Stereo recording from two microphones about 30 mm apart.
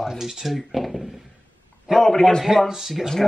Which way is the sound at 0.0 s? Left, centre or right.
Centre.